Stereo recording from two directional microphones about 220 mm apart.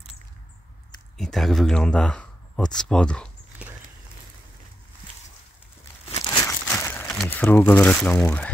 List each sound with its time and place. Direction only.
1.1 s speech: centre (ahead or behind)
6.2 s crumpling: 15° left (ahead or behind)